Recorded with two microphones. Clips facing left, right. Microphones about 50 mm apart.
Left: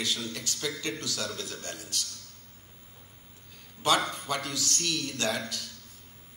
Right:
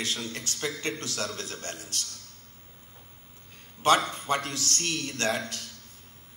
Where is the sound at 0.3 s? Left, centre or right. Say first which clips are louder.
Right 1 dB; right.